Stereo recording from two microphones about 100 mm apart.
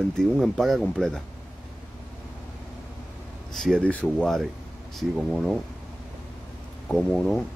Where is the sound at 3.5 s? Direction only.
5° left (ahead or behind).